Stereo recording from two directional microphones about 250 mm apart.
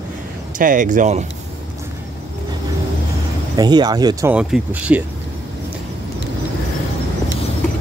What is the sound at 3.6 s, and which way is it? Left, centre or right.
Speech, centre.